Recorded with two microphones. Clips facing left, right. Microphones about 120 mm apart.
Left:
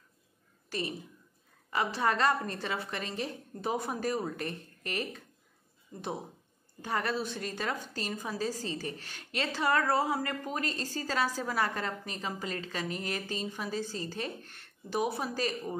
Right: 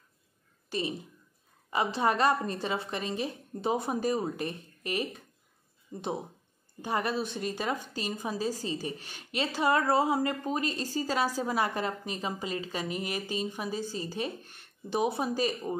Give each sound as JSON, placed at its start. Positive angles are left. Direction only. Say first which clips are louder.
{"t": 0.7, "sound": "a woman's voice", "louder": "right 3 dB", "side_deg": -20}